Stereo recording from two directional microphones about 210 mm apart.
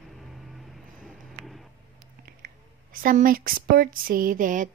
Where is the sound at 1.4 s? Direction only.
Centre (ahead or behind).